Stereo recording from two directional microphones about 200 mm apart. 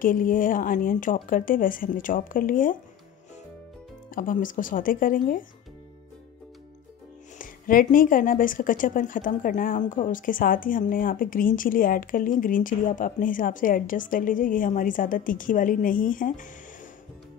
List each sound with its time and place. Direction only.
0.0 s speech: 45° left (ahead or behind)
4.1 s speech: 45° left (ahead or behind)
7.3 s speech: 45° left (ahead or behind)